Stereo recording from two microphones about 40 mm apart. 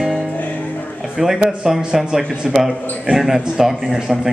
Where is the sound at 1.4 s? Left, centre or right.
Centre.